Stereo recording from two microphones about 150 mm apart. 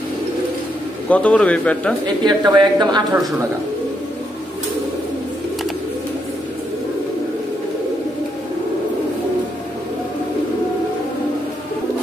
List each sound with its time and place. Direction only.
1.0 s speech: 10° left (ahead or behind)
2.2 s speech: 30° right (ahead or behind)